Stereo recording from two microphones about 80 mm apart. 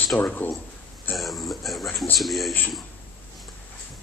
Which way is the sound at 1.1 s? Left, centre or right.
Centre.